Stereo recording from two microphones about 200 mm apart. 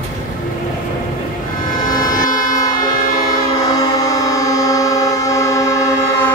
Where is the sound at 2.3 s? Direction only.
20° left (ahead or behind).